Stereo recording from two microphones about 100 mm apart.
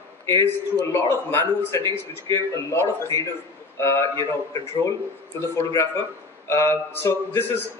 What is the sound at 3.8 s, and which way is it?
Speech, 25° left (ahead or behind).